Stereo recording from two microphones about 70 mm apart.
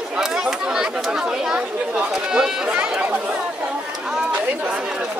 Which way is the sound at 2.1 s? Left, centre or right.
Centre.